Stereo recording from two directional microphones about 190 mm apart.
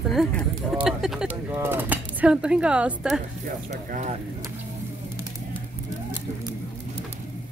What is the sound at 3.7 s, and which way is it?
Speech, 40° right (ahead or behind).